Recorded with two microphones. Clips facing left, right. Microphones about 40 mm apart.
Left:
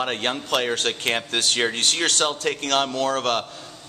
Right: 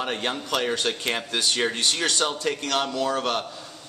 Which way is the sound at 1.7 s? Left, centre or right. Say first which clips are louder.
Left 2 dB; left.